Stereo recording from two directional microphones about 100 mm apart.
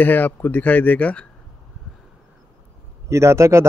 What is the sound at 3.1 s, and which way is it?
Speech, 30° right (ahead or behind).